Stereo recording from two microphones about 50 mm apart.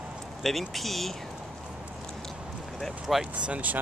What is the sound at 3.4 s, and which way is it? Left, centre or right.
Speech, right.